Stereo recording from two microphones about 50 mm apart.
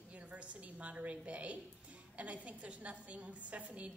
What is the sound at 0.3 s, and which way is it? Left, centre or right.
A woman's voice, right.